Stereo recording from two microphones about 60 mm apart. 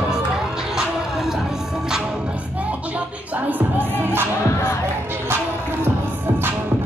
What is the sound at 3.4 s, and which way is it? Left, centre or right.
Music, right.